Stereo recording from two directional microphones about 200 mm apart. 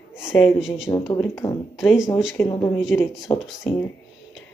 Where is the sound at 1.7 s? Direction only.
Centre (ahead or behind).